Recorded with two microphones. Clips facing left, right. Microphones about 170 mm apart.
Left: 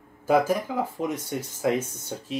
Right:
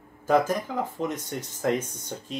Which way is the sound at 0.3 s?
10° left (ahead or behind).